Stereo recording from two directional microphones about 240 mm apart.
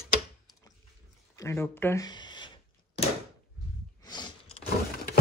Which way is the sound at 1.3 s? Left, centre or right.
Centre.